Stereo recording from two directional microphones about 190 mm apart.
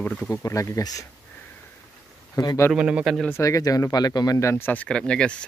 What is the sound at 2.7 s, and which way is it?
Speech, 5° right (ahead or behind).